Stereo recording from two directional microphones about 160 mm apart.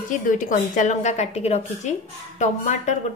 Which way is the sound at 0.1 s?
55° left (ahead or behind).